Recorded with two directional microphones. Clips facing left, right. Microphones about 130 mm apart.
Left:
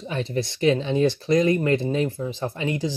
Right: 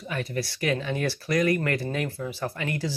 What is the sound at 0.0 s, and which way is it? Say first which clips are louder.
Speech: left 4 dB; 25° left (ahead or behind).